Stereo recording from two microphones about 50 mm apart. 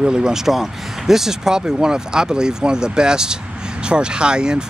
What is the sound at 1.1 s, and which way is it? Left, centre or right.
Speech, centre.